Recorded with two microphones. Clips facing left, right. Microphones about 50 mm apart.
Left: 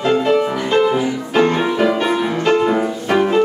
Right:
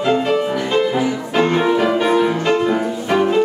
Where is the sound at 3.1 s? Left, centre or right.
Centre.